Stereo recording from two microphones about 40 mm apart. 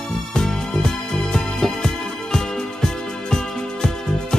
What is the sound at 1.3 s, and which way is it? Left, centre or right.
Music, centre.